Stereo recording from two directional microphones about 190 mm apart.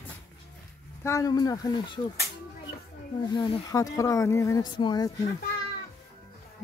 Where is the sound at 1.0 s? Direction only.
15° left (ahead or behind).